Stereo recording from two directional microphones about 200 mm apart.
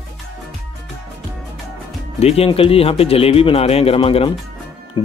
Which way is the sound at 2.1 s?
30° left (ahead or behind).